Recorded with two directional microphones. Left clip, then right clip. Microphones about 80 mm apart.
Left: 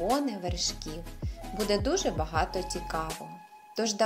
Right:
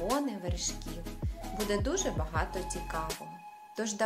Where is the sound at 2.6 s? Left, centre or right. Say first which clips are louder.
Left 3 dB; left.